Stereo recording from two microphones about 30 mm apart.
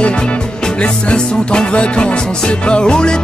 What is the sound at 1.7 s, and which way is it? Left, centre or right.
Music, left.